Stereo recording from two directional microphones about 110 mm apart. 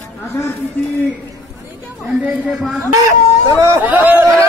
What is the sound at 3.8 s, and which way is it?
Speech, 15° right (ahead or behind).